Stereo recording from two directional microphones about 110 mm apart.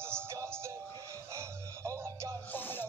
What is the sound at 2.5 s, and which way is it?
Music, 20° left (ahead or behind).